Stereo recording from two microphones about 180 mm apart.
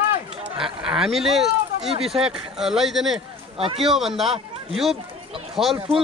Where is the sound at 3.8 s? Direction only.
Centre (ahead or behind).